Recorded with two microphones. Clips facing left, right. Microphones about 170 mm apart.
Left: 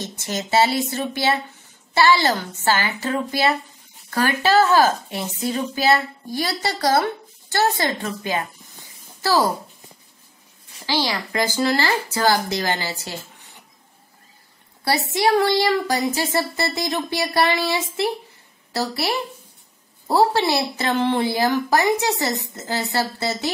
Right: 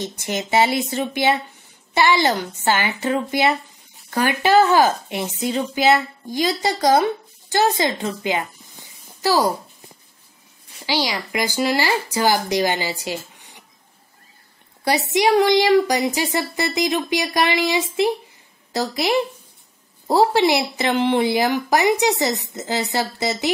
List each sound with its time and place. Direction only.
0.0 s a woman's voice: 15° right (ahead or behind)
10.9 s speech: 15° right (ahead or behind)
14.9 s speech: 20° right (ahead or behind)